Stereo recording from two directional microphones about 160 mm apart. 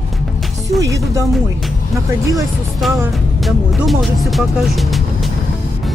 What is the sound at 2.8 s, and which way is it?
Speech, centre (ahead or behind).